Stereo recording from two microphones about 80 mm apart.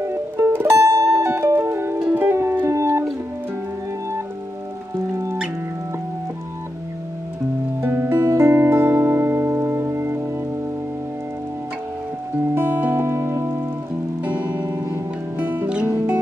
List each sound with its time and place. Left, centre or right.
0.0 s music: right
5.1 s music: right
7.8 s music: right
12.5 s music: right